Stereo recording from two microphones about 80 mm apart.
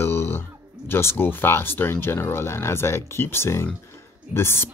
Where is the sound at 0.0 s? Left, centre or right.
Left.